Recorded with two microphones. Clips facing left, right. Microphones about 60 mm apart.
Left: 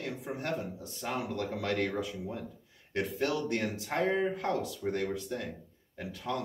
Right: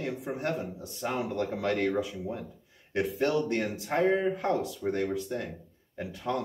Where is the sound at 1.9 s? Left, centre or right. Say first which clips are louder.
Right 4 dB; centre.